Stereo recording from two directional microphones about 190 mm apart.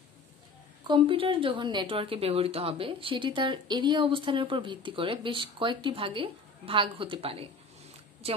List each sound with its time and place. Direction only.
0.8 s a woman's voice: 25° right (ahead or behind)